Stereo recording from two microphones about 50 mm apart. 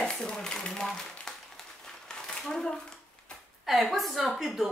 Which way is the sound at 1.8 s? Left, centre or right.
Centre.